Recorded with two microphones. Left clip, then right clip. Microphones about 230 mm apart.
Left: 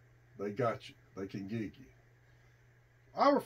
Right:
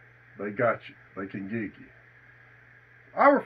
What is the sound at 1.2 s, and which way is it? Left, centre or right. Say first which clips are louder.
Speech: right 6 dB; left.